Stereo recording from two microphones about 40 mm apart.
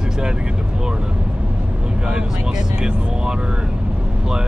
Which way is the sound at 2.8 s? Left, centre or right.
Centre.